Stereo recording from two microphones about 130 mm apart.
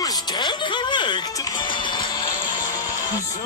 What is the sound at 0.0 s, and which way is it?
Music, 30° left (ahead or behind).